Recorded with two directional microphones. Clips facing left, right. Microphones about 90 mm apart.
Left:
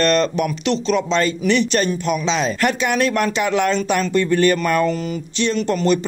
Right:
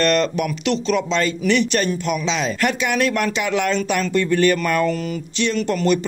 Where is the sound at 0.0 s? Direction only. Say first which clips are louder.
Left 1 dB; 35° left (ahead or behind).